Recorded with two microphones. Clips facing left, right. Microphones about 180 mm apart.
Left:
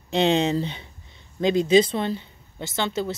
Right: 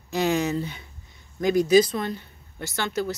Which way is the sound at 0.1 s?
25° left (ahead or behind).